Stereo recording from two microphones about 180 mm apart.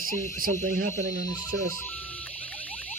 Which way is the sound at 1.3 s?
20° left (ahead or behind).